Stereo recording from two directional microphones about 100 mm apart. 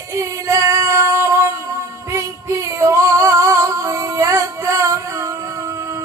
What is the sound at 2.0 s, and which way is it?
Female singing, 30° right (ahead or behind).